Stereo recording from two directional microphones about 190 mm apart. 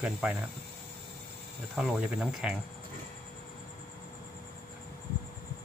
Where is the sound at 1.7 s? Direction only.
5° right (ahead or behind).